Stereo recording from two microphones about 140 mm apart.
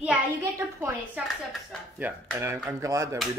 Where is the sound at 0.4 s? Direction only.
20° right (ahead or behind).